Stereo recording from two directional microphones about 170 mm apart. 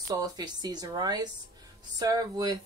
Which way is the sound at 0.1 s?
25° right (ahead or behind).